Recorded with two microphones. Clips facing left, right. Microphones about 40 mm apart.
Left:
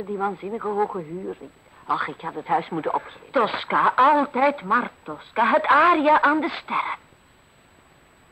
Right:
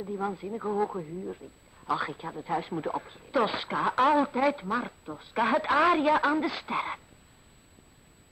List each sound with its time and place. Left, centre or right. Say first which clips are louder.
0.0 s a man's voice: left 6 dB; left